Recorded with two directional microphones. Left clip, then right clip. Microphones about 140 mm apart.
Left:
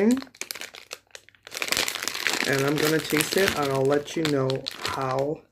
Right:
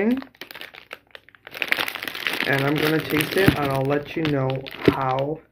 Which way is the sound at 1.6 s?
15° left (ahead or behind).